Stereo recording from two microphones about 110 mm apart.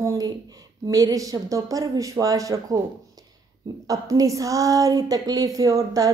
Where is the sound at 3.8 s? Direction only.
30° right (ahead or behind).